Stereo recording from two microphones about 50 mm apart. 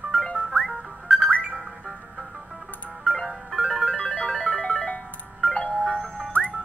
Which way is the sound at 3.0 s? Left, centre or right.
Centre.